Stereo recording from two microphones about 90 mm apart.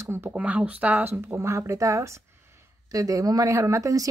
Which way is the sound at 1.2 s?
30° right (ahead or behind).